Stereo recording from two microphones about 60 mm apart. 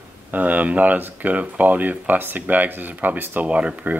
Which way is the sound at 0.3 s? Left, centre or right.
Right.